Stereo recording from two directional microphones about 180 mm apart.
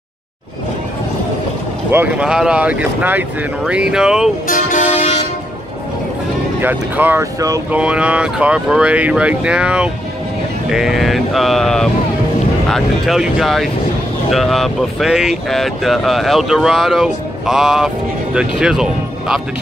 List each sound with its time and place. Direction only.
1.9 s speech: 10° right (ahead or behind)
4.5 s vehicle: 45° left (ahead or behind)
6.6 s speech: 10° right (ahead or behind)
7.7 s speech: 5° right (ahead or behind)